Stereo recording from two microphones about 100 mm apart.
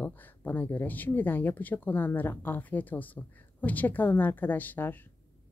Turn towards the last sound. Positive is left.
turn(degrees=20)  # may be behind; listen again after turning